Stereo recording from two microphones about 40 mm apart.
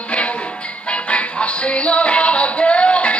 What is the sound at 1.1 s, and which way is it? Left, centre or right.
Music, left.